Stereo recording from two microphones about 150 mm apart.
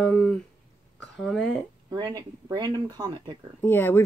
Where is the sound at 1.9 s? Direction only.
25° right (ahead or behind).